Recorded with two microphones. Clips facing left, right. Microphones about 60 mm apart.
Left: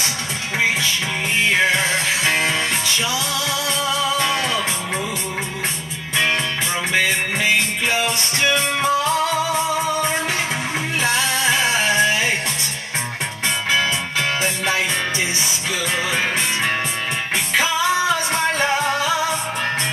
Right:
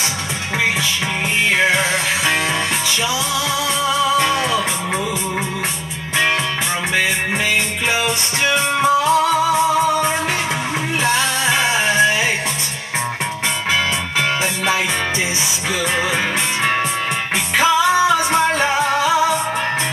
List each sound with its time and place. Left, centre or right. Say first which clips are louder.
1.6 s music: right 3 dB; centre
4.2 s music: right 3 dB; centre
8.5 s music: right 3 dB; centre
11.9 s music: right 4 dB; centre
18.3 s music: right 3 dB; centre